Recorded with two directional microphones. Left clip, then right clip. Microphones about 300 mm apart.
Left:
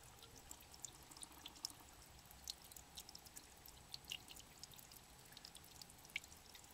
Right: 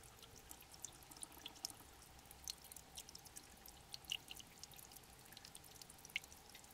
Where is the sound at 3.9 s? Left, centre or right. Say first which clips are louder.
Right 4 dB; centre.